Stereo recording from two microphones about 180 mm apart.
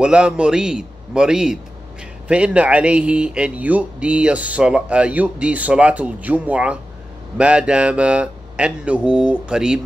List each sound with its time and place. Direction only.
0.0 s speech: 5° right (ahead or behind)